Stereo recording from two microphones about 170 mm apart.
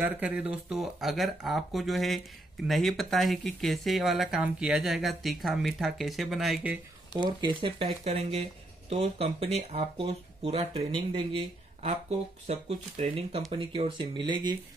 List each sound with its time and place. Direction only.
0.0 s speech: 5° right (ahead or behind)
7.2 s speech: 30° right (ahead or behind)